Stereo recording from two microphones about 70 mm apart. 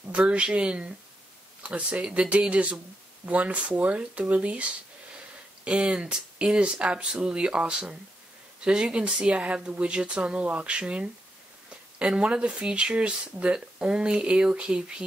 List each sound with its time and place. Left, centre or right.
0.1 s speech: centre